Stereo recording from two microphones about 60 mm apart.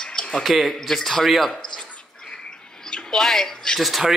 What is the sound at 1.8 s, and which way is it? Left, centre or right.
Dog, centre.